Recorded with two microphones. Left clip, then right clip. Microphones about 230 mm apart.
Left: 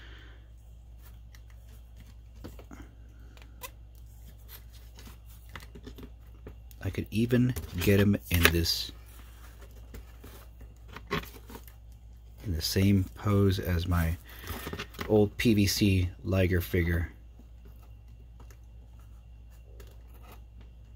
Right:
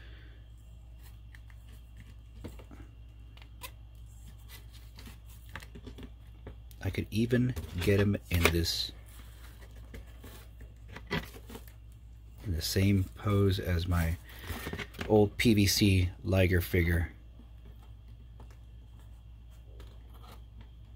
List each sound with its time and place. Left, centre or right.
0.0 s a sound: centre
6.8 s speech: centre
12.4 s speech: centre